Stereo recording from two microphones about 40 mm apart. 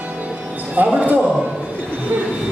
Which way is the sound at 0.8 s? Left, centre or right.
Right.